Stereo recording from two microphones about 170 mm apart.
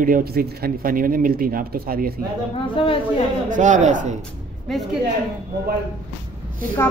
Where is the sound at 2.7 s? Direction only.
30° left (ahead or behind).